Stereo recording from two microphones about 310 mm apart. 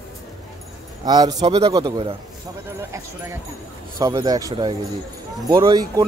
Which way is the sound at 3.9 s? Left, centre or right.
Centre.